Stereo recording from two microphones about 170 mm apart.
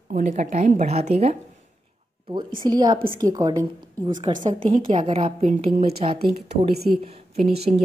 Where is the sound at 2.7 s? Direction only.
25° right (ahead or behind).